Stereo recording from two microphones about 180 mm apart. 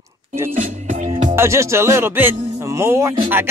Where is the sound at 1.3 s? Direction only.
15° right (ahead or behind).